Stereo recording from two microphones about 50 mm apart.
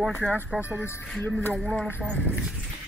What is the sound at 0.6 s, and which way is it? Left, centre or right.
Speech, right.